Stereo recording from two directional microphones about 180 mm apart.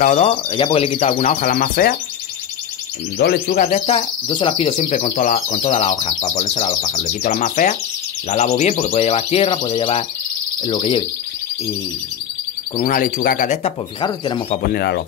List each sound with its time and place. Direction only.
0.0 s speech: 40° left (ahead or behind); by 2.0 s 55° left (ahead or behind)
3.2 s a man's voice: 55° left (ahead or behind)
3.6 s speech: 35° left (ahead or behind)
4.6 s speech: 40° left (ahead or behind)
12.7 s speech: 50° left (ahead or behind)
14.0 s speech: 25° left (ahead or behind)
14.7 s a man's voice: 65° left (ahead or behind)